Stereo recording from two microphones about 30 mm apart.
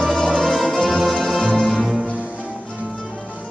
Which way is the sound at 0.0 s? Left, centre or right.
Centre.